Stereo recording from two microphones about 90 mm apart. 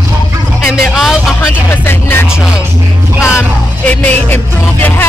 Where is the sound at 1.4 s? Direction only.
25° left (ahead or behind).